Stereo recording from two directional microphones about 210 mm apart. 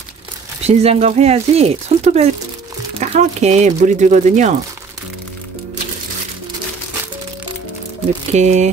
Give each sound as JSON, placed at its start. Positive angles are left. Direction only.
{"t": 0.7, "sound": "speech", "side_deg": -30}
{"t": 8.3, "sound": "speech", "side_deg": -35}